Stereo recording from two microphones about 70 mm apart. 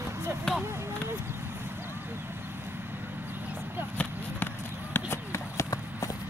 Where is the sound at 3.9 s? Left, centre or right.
Left.